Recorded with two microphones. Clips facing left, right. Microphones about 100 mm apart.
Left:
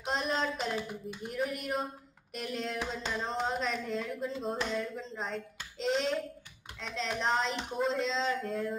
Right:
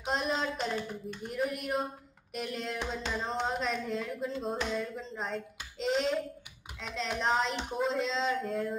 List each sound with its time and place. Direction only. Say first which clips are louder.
0.0 s music: even; centre (ahead or behind)